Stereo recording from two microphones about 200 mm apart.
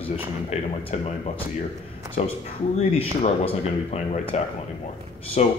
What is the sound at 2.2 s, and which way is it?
Speech, 35° left (ahead or behind).